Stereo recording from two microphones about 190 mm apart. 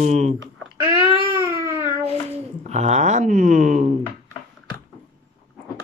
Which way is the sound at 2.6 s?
35° right (ahead or behind).